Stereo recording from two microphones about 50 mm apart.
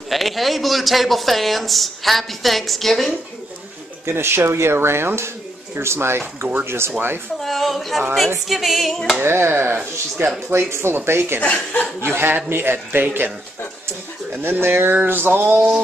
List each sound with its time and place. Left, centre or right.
0.1 s speech: centre
4.0 s a man's voice: right
7.3 s a sound: centre
8.5 s speech: centre
9.2 s a man's voice: right
9.8 s speech: right
10.7 s a man's voice: right
11.4 s speech: left
12.0 s a man's voice: right
13.8 s a sound: right